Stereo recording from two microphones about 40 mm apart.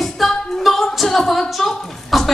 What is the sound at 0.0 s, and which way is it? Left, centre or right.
Music, centre.